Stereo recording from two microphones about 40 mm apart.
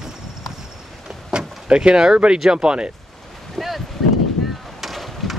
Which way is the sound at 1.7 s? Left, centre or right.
Right.